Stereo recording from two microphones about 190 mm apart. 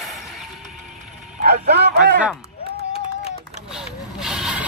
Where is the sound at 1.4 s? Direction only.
60° right (ahead or behind).